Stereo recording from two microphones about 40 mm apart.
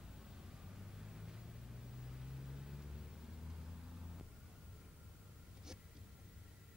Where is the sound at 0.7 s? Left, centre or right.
Centre.